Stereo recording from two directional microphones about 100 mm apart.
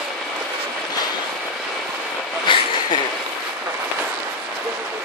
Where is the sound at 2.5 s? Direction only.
55° left (ahead or behind).